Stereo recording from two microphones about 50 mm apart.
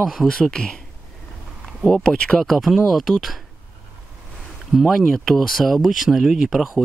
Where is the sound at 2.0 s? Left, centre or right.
Centre.